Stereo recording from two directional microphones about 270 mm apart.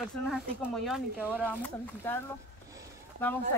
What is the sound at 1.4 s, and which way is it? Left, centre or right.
Speech, centre.